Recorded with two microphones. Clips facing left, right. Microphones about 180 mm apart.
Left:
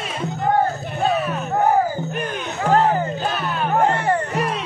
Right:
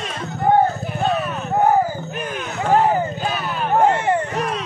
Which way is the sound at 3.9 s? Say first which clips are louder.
Right 1 dB; 20° right (ahead or behind).